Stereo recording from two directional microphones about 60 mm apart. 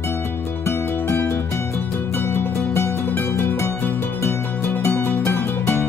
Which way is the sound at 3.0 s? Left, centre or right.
Left.